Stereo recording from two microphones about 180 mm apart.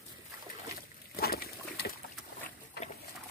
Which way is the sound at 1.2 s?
60° left (ahead or behind).